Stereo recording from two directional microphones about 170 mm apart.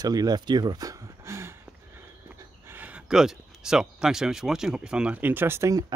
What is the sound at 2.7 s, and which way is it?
Speech, 10° right (ahead or behind).